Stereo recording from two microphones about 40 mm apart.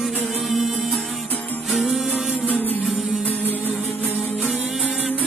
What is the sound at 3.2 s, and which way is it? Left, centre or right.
Music, left.